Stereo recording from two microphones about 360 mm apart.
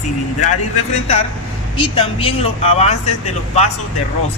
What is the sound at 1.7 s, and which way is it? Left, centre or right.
Speech, centre.